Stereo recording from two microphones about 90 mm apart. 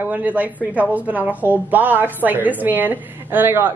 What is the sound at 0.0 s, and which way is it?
A woman's voice, 20° right (ahead or behind).